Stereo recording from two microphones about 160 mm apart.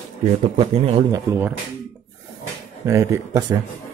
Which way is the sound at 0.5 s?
40° right (ahead or behind).